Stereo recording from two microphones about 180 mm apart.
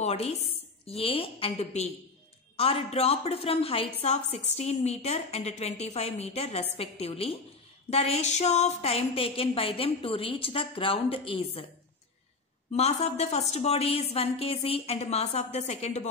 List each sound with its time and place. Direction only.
0.0 s a woman's voice: 35° left (ahead or behind)
12.7 s a woman's voice: 35° left (ahead or behind)